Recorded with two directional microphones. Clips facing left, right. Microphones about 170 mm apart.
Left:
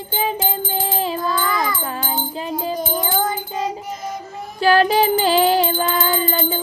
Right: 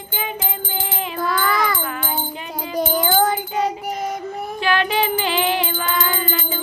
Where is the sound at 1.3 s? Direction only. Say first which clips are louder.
Right 1 dB; 70° right (ahead or behind).